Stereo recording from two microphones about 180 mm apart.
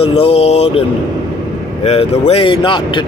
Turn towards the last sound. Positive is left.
turn(degrees=25)  # may be behind; listen again after turning